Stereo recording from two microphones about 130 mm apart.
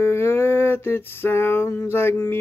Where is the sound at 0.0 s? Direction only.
20° left (ahead or behind).